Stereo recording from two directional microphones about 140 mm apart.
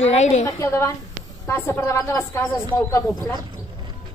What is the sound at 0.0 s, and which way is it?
Speech, 55° left (ahead or behind).